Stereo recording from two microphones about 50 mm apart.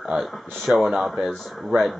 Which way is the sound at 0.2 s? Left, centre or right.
Centre.